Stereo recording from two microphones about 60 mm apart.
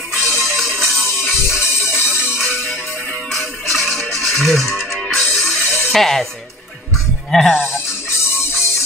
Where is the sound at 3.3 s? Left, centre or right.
Centre.